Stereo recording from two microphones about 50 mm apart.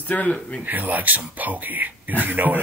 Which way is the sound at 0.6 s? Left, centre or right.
Right.